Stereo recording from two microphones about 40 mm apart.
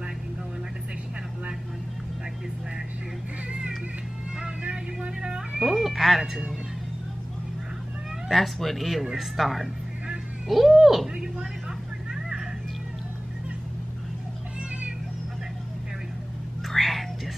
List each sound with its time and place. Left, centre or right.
4.4 s vehicle: right
5.6 s cat: centre
8.3 s speech: centre
16.6 s whispering: centre